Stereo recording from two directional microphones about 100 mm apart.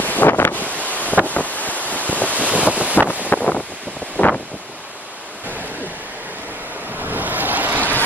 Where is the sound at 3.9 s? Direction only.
15° left (ahead or behind).